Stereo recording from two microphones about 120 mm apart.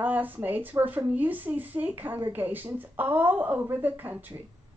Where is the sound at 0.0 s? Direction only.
15° right (ahead or behind).